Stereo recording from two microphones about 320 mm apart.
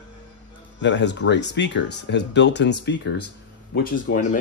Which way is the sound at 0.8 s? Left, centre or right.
Left.